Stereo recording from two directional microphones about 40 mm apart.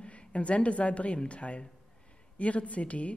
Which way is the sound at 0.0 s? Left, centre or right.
Left.